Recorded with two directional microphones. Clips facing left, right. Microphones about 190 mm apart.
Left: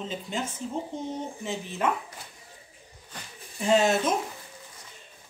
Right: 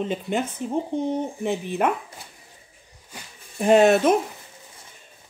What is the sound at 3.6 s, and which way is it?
Speech, 60° right (ahead or behind).